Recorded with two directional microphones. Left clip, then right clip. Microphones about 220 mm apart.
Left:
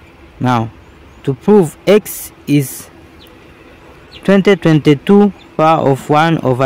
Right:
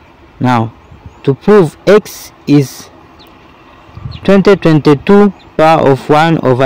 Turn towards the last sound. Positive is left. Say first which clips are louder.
# right 3 dB
turn(degrees=-15)  # may be behind; listen again after turning